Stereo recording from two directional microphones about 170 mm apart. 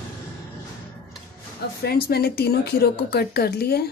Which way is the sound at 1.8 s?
65° left (ahead or behind).